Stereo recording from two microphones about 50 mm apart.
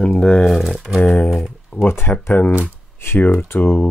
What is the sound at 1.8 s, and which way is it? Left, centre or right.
Speech, left.